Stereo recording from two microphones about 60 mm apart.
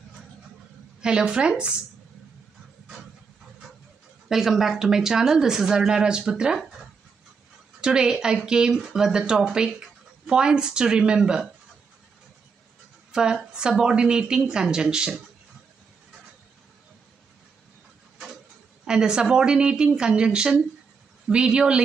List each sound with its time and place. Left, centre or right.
1.0 s speech: centre
4.3 s speech: centre
13.1 s speech: centre
18.9 s speech: centre